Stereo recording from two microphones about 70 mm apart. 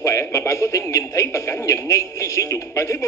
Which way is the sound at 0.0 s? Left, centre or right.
Left.